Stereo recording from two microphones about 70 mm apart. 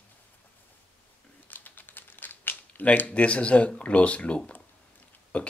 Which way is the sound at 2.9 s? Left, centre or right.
Centre.